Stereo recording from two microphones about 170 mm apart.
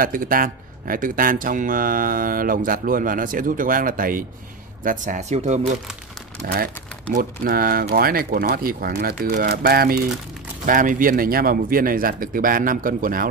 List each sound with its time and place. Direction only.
0.0 s speech: 55° right (ahead or behind)
6.4 s speech: 60° right (ahead or behind)
10.6 s speech: 55° right (ahead or behind)